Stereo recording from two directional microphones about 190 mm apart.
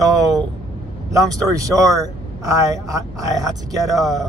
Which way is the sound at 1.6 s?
15° right (ahead or behind).